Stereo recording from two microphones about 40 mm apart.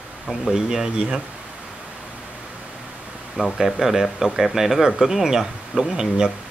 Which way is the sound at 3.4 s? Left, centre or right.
Right.